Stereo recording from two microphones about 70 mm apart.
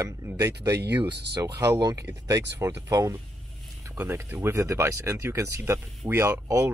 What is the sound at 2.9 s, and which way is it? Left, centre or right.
Speech, right.